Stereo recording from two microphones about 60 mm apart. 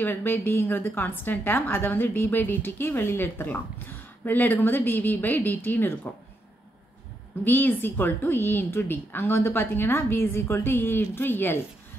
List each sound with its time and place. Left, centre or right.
0.0 s a woman's voice: left
7.4 s a woman's voice: left